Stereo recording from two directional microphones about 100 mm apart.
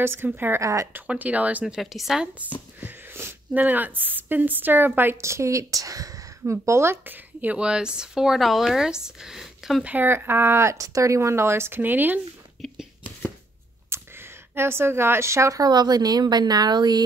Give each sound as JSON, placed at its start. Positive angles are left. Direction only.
{"t": 0.0, "sound": "speech", "side_deg": -20}
{"t": 0.9, "sound": "a woman's voice", "side_deg": -15}
{"t": 1.8, "sound": "speech", "side_deg": 0}
{"t": 2.8, "sound": "a woman's voice", "side_deg": -25}
{"t": 9.8, "sound": "speech", "side_deg": -20}
{"t": 13.8, "sound": "speech", "side_deg": -25}